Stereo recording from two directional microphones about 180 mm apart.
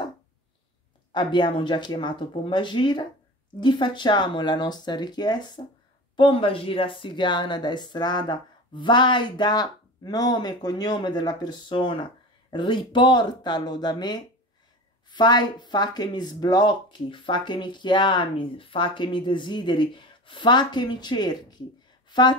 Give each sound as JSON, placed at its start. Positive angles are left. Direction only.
{"t": 1.1, "sound": "speech", "side_deg": 25}